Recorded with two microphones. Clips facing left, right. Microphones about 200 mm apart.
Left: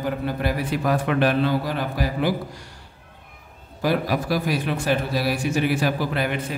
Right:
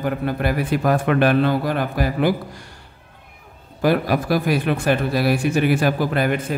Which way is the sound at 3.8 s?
55° right (ahead or behind).